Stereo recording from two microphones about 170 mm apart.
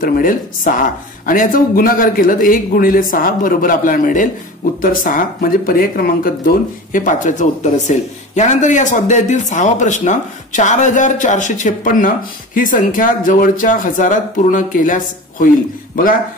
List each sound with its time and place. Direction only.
0.0 s speech: 55° left (ahead or behind)